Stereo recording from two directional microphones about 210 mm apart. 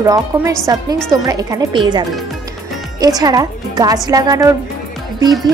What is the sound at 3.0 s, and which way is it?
Speech, 20° right (ahead or behind).